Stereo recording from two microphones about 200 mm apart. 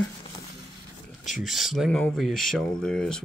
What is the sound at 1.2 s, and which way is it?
Speech, centre (ahead or behind).